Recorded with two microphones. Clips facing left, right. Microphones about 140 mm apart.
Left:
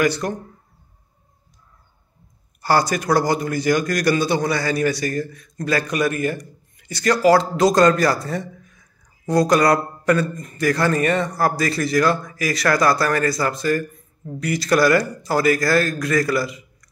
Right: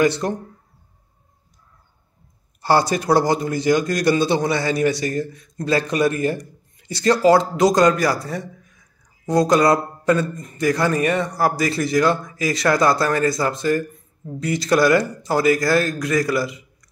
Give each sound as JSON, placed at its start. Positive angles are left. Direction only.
{"t": 0.0, "sound": "a man's voice", "side_deg": -25}
{"t": 2.6, "sound": "a man's voice", "side_deg": -25}